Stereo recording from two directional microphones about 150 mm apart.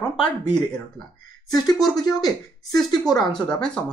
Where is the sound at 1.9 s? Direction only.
25° left (ahead or behind).